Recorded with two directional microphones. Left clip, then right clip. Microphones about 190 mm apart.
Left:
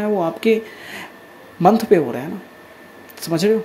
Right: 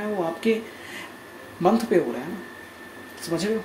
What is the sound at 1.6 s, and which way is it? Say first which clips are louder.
Speech: left 8 dB; 50° left (ahead or behind).